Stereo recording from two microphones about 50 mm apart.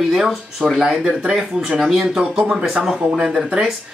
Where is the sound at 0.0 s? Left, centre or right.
Centre.